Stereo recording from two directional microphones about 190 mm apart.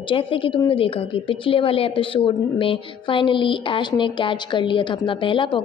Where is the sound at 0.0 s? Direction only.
25° left (ahead or behind).